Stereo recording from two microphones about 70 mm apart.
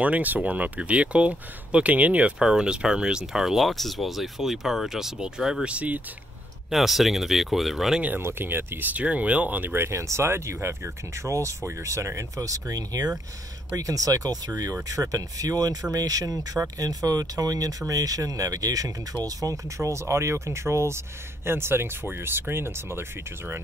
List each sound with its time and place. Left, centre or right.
0.0 s speech: right
6.7 s speech: centre
8.2 s speech: right
9.8 s speech: right